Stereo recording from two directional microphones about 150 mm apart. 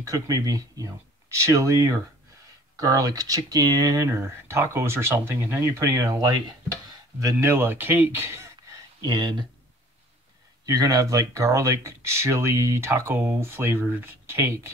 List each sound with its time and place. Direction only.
0.0 s speech: 20° right (ahead or behind)
9.0 s speech: 30° right (ahead or behind)
10.6 s speech: 25° right (ahead or behind)